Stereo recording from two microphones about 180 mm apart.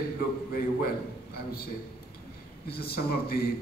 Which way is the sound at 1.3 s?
60° left (ahead or behind).